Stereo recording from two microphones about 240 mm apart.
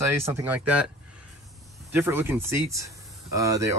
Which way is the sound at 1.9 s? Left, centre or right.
Centre.